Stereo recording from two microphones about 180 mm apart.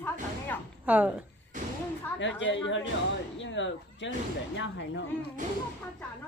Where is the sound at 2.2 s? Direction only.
90° left.